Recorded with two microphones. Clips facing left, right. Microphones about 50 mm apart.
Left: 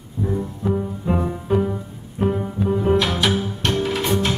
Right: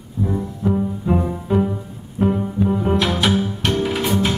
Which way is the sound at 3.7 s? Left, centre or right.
Centre.